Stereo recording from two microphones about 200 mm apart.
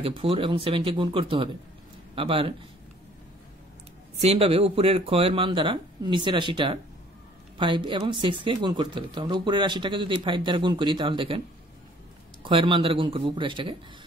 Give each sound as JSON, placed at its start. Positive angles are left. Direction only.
{"t": 0.0, "sound": "speech", "side_deg": -25}
{"t": 4.2, "sound": "speech", "side_deg": -30}
{"t": 12.4, "sound": "speech", "side_deg": -25}